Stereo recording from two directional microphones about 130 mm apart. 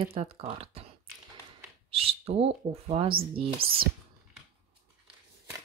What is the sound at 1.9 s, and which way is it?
Speech, 45° right (ahead or behind).